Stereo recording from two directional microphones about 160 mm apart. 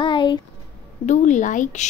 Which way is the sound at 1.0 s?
50° left (ahead or behind).